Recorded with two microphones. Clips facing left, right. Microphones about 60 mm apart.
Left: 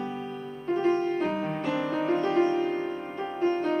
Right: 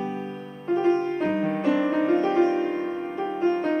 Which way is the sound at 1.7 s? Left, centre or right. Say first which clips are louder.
Right 6 dB; right.